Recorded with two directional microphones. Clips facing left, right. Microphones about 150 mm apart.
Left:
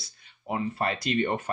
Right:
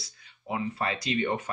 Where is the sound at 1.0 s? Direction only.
35° left (ahead or behind).